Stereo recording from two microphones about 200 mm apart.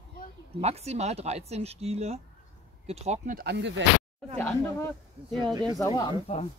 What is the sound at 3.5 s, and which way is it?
Speech, 60° right (ahead or behind).